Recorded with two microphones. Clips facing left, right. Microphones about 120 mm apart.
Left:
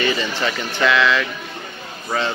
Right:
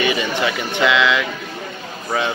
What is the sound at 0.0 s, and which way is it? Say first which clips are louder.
Speech: right 2 dB; 15° right (ahead or behind).